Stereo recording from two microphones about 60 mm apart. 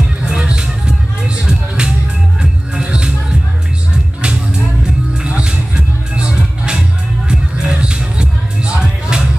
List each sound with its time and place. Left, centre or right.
0.2 s music: centre
5.2 s music: centre